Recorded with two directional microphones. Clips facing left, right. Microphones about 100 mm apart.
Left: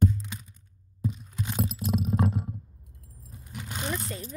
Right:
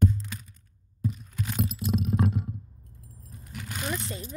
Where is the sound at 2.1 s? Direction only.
35° left (ahead or behind).